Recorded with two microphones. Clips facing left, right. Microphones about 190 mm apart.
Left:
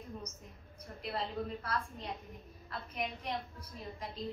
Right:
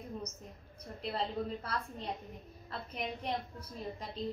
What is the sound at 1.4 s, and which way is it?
Speech, 25° right (ahead or behind).